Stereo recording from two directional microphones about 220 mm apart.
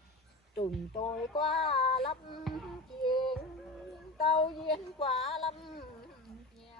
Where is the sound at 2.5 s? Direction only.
Centre (ahead or behind).